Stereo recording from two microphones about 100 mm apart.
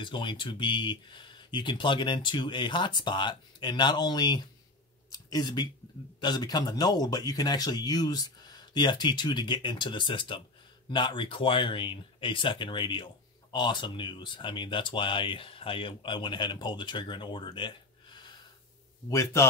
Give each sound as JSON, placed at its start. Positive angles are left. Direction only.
{"t": 0.0, "sound": "speech", "side_deg": 55}
{"t": 19.0, "sound": "a man's voice", "side_deg": 30}